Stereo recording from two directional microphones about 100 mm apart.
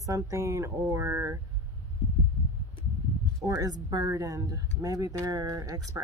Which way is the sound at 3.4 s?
40° right (ahead or behind).